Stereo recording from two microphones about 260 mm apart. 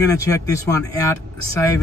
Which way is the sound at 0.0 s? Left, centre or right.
Centre.